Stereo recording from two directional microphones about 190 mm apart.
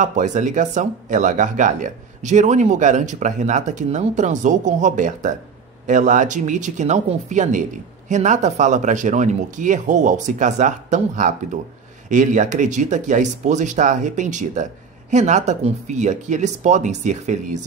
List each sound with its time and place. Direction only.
0.0 s speech: 40° right (ahead or behind)